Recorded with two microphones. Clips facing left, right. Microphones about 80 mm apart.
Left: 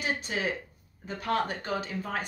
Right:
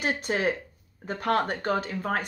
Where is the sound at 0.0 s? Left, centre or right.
Right.